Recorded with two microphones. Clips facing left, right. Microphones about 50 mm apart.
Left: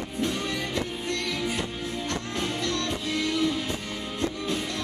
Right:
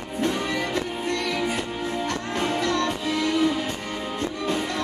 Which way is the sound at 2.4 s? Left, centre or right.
Centre.